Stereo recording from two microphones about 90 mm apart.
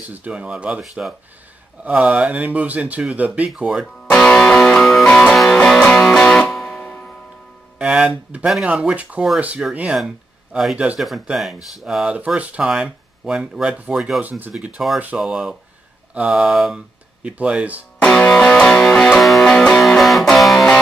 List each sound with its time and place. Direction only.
0.1 s speech: 15° right (ahead or behind)
3.8 s music: 10° left (ahead or behind)
7.8 s speech: 10° right (ahead or behind)
18.0 s music: 10° left (ahead or behind)